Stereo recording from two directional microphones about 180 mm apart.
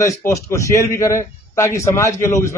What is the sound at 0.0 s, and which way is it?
A man's voice, 15° left (ahead or behind).